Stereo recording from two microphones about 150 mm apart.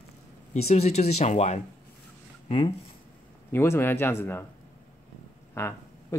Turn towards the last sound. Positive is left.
turn(degrees=20)  # may be behind; listen again after turning